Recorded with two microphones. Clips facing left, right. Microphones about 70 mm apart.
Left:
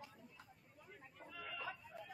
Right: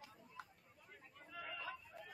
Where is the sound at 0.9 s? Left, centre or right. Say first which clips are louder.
Even; centre.